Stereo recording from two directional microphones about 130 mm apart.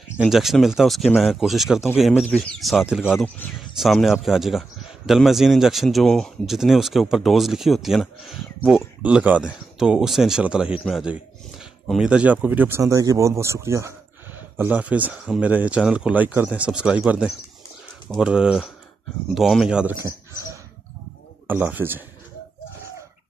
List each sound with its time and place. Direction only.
0.3 s a man's voice: centre (ahead or behind)
21.5 s speech: 15° right (ahead or behind)